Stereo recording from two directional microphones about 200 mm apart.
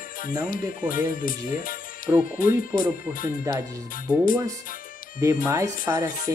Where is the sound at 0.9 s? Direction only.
45° left (ahead or behind).